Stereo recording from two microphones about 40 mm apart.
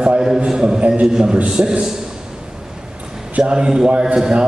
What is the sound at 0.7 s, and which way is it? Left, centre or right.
Speech, right.